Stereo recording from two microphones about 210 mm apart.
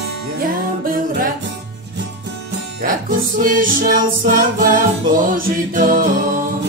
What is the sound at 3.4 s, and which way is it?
Music, 40° right (ahead or behind).